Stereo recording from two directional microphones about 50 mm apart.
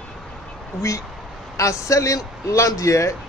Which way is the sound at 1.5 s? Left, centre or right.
Left.